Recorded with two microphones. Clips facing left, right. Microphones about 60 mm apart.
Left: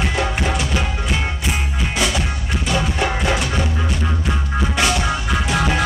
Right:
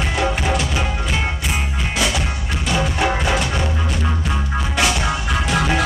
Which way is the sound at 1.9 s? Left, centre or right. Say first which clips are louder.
Even; centre.